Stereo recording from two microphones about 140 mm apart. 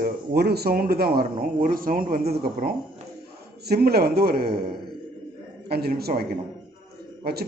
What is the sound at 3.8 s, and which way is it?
Speech, 90° right.